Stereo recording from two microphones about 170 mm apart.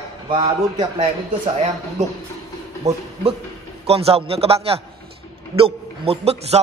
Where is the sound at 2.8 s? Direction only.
20° right (ahead or behind).